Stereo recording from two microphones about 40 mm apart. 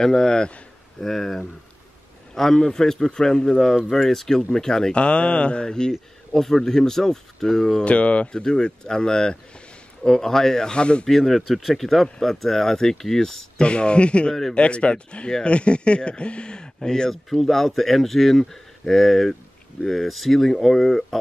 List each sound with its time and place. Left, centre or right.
0.0 s speech: centre
1.0 s a man's voice: centre
3.9 s speech: centre
4.9 s speech: left; by 7.8 s centre
7.8 s speech: left
8.3 s speech: centre
11.1 s speech: centre
13.6 s speech: left
17.1 s speech: centre